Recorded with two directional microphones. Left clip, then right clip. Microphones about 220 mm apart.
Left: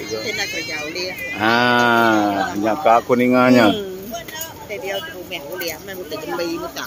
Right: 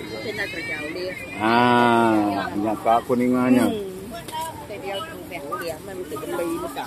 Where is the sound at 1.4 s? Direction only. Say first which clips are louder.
Left 2 dB; 20° left (ahead or behind).